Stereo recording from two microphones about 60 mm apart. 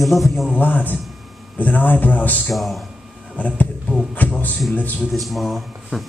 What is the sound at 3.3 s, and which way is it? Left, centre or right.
Speech, left.